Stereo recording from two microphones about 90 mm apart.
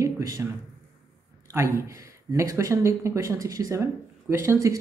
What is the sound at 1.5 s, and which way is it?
A woman's voice, 35° right (ahead or behind).